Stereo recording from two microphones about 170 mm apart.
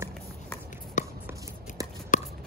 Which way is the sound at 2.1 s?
50° left (ahead or behind).